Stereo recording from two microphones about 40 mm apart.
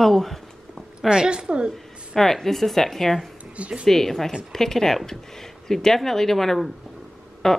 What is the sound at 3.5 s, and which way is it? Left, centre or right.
Speech, right.